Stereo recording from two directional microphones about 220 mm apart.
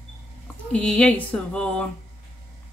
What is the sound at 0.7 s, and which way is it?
Speech, 5° left (ahead or behind).